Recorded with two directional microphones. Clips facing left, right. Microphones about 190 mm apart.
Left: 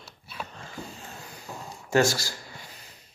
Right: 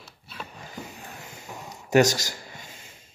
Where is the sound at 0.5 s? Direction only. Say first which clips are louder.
Even; 20° right (ahead or behind).